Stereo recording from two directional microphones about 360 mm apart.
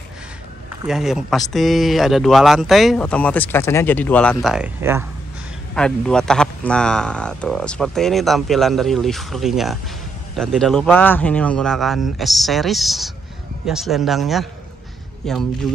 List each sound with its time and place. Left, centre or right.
0.8 s speech: centre